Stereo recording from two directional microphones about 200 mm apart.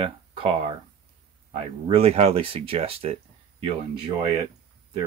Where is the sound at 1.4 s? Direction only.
30° right (ahead or behind).